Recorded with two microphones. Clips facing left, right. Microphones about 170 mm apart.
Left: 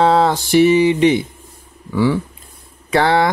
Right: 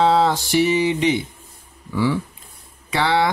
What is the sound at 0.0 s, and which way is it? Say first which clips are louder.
Music: left 3 dB; 55° left (ahead or behind).